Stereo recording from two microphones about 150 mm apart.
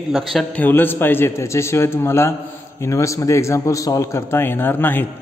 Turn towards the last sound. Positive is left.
turn(degrees=15)  # may be behind; listen again after turning